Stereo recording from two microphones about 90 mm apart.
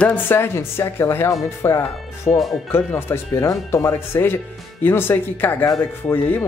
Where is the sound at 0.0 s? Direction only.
25° left (ahead or behind).